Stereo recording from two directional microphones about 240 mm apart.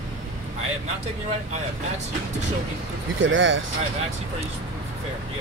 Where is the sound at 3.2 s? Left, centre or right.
Right.